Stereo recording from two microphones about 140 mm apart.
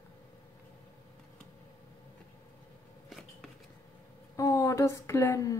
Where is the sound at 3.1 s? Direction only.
Centre (ahead or behind).